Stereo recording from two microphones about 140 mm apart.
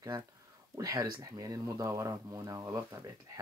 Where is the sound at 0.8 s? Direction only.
20° right (ahead or behind).